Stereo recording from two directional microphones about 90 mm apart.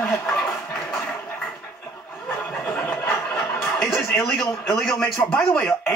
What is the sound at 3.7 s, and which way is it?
Music, 5° left (ahead or behind).